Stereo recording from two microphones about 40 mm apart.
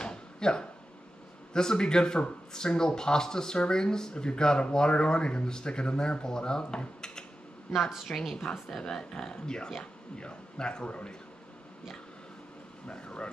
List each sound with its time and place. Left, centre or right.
0.0 s a sound: left
1.5 s speech: centre
7.9 s a woman's voice: centre; by 11.1 s left
12.8 s speech: left